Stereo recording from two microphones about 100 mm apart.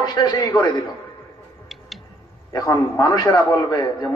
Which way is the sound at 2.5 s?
35° left (ahead or behind).